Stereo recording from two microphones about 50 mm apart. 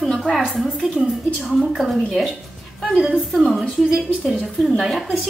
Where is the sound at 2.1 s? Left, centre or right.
Centre.